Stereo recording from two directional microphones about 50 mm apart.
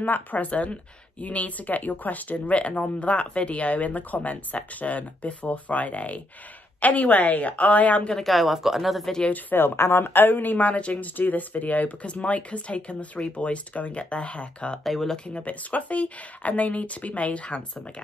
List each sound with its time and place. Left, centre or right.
0.0 s a woman's voice: left
8.2 s speech: centre
9.3 s speech: left
14.8 s speech: centre
15.2 s speech: left